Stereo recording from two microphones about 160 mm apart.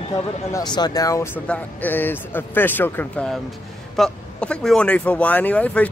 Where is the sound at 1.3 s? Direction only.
10° left (ahead or behind).